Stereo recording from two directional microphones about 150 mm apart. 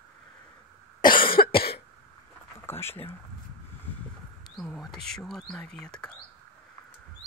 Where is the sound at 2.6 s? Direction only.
15° left (ahead or behind).